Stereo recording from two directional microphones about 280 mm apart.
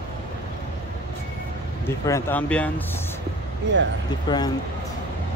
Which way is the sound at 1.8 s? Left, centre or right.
Centre.